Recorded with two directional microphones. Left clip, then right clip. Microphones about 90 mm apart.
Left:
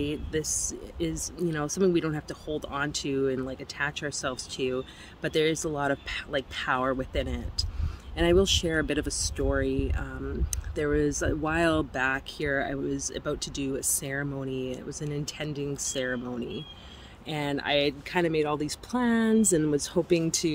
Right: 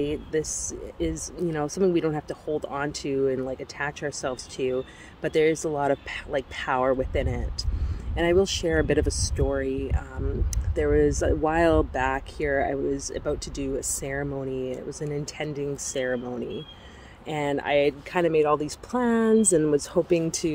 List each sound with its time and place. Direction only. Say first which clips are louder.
0.0 s speech: right 4 dB; 35° left (ahead or behind)
4.3 s speech: right 3 dB; 45° left (ahead or behind); by 20.5 s 30° left (ahead or behind)